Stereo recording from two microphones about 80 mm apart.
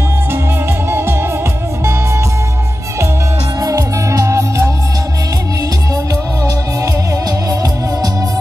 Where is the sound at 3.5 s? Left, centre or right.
Right.